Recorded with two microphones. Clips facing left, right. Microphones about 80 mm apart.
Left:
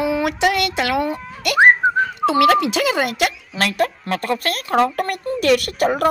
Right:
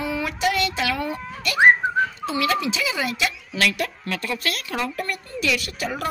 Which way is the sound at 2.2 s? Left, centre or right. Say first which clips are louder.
Left 9 dB; left.